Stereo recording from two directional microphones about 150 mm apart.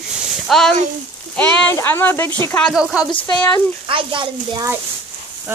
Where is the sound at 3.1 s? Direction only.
35° left (ahead or behind).